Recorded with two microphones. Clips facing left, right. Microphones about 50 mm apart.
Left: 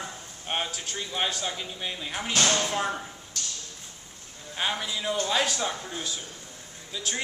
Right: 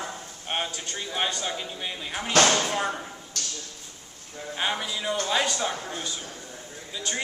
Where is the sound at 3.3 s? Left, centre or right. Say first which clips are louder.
Right 1 dB; right.